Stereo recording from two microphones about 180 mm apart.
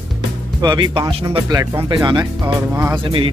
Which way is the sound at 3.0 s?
30° right (ahead or behind).